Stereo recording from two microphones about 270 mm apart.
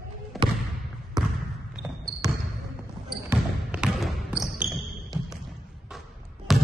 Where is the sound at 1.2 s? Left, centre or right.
Centre.